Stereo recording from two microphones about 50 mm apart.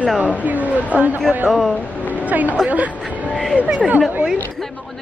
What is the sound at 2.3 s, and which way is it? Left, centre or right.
Speech, right.